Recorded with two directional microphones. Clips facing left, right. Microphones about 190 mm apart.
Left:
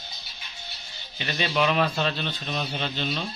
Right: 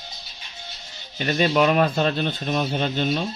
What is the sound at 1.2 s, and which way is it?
Speech, 45° right (ahead or behind).